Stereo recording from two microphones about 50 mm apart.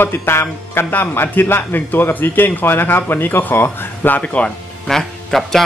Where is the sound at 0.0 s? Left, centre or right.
Left.